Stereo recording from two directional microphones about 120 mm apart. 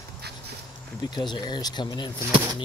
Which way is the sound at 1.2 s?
40° left (ahead or behind).